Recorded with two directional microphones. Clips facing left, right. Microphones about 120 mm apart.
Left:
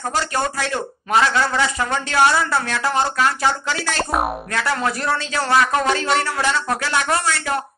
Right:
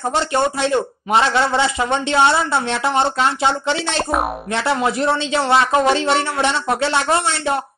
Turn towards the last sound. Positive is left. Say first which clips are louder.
# right 3 dB
turn(degrees=-25)  # may be behind; listen again after turning